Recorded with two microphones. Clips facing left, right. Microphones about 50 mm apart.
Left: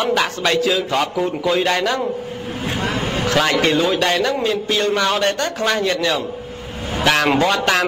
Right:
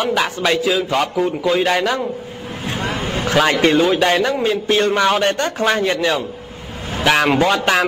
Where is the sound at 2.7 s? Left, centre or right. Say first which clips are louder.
Even; right.